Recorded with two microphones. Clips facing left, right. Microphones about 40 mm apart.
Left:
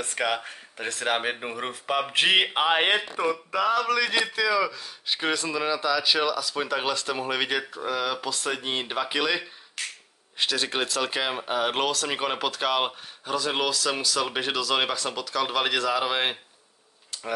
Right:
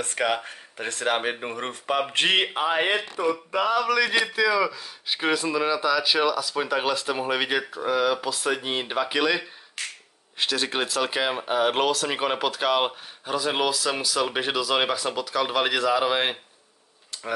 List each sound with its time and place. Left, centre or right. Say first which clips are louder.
0.0 s speech: right 2 dB; centre
2.5 s speech: left 1 dB; left
3.0 s speech: right 1 dB; left
3.8 s speech: right 2 dB; centre
17.1 s tick-tock: even; centre